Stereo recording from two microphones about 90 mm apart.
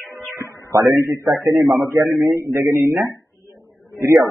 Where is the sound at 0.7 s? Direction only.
35° right (ahead or behind).